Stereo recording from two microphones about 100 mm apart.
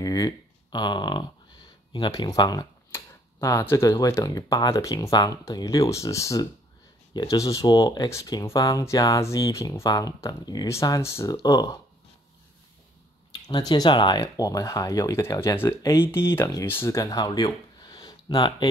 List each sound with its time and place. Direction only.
0.0 s speech: 40° left (ahead or behind)
2.9 s tick-tock: 30° left (ahead or behind)
3.6 s speech: 30° left (ahead or behind)
10.7 s speech: 30° left (ahead or behind)
13.3 s speech: 45° left (ahead or behind)
14.2 s speech: 35° left (ahead or behind); by 16.9 s 20° left (ahead or behind)
16.9 s speech: 35° left (ahead or behind)